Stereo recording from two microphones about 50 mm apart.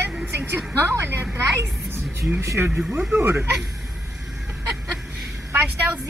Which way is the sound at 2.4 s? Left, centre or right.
Right.